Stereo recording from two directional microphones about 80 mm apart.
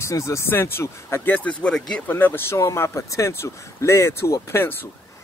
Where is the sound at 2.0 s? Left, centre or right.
Left.